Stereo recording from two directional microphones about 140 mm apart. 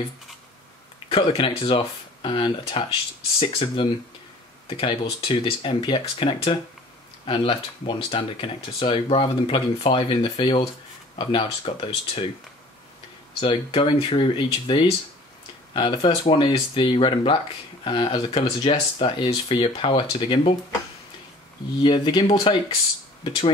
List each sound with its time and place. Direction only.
0.9 s speech: 40° left (ahead or behind)
13.4 s speech: 40° left (ahead or behind)
21.8 s speech: 35° left (ahead or behind)